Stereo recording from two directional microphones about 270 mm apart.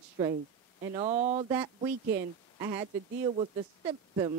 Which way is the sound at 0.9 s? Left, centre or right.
Right.